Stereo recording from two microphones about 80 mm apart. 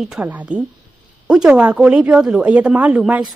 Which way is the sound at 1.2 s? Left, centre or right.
Centre.